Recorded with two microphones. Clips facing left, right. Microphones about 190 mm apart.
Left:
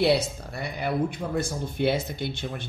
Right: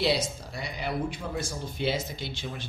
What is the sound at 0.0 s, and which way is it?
Speech, 60° left (ahead or behind).